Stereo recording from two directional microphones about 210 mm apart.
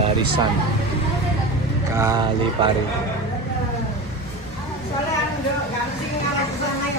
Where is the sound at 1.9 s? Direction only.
15° right (ahead or behind).